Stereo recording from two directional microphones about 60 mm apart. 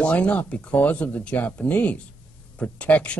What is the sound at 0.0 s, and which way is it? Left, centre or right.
Speech, left.